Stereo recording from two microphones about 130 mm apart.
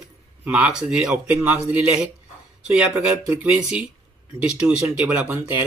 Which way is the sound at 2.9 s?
25° right (ahead or behind).